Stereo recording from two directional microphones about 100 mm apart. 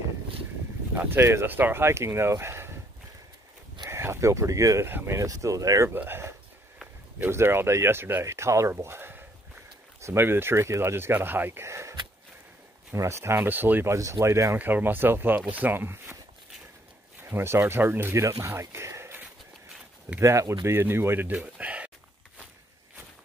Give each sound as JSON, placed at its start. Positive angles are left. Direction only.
{"t": 0.9, "sound": "speech", "side_deg": -25}
{"t": 3.9, "sound": "speech", "side_deg": -25}
{"t": 5.9, "sound": "speech", "side_deg": -20}
{"t": 13.9, "sound": "speech", "side_deg": -30}
{"t": 17.2, "sound": "speech", "side_deg": -25}
{"t": 21.5, "sound": "a sound", "side_deg": -15}